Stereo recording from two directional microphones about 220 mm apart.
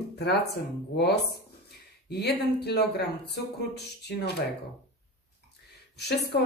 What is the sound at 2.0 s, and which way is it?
Speech, 50° left (ahead or behind).